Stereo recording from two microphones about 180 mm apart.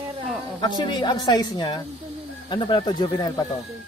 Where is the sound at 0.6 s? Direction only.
25° left (ahead or behind).